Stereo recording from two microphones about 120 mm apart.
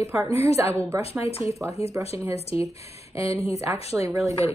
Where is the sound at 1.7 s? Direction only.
60° left (ahead or behind).